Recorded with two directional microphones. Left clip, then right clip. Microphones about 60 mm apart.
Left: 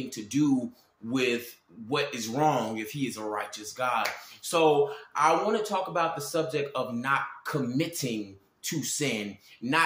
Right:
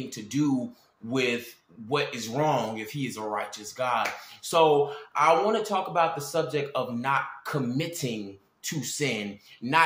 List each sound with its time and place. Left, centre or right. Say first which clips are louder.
0.1 s speech: left 1 dB; right
8.8 s speech: right 2 dB; centre
9.6 s speech: right 1 dB; right